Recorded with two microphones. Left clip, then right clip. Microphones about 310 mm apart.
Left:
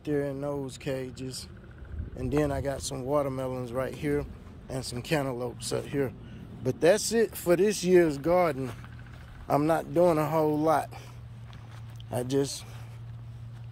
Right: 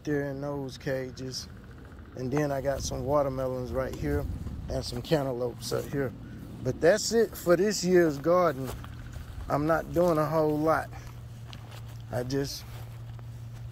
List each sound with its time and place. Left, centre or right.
0.0 s speech: centre
7.2 s speech: centre
8.3 s speech: centre
12.1 s speech: centre